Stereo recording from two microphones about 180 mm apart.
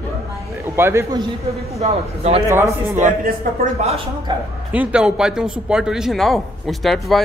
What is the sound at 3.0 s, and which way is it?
Speech, 40° right (ahead or behind).